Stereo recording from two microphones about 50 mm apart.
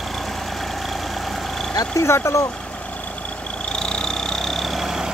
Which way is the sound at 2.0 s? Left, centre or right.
Left.